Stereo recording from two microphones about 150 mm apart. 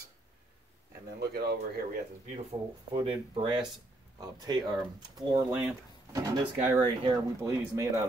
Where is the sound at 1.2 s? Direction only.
90° right.